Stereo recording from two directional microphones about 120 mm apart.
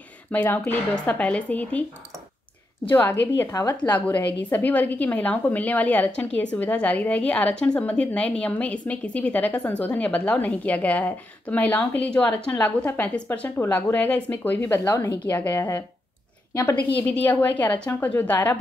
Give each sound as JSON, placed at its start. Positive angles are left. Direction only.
{"t": 0.3, "sound": "a woman's voice", "side_deg": 15}
{"t": 2.9, "sound": "a woman's voice", "side_deg": 15}
{"t": 3.6, "sound": "a woman's voice", "side_deg": 40}
{"t": 3.9, "sound": "a woman's voice", "side_deg": 15}
{"t": 16.9, "sound": "a woman's voice", "side_deg": 15}